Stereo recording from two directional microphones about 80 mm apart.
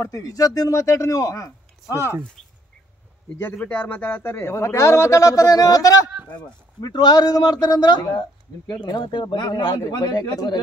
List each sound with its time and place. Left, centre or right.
0.0 s speech: left
3.3 s speech: left
6.8 s a man's voice: left